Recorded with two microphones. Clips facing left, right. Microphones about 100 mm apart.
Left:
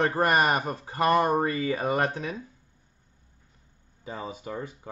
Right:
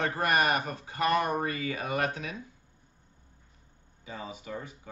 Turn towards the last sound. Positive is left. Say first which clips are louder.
# left 4 dB
turn(degrees=45)  # may be behind; listen again after turning